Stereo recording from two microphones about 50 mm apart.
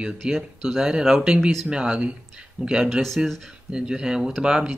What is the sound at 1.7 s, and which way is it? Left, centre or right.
Speech, centre.